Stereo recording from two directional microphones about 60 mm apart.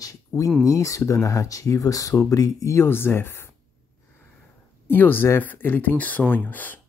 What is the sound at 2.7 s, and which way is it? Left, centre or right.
Speech, left.